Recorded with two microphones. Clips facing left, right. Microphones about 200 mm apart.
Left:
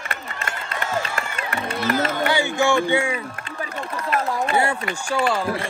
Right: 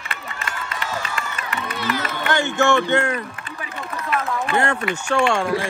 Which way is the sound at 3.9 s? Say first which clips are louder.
Even; 35° left (ahead or behind).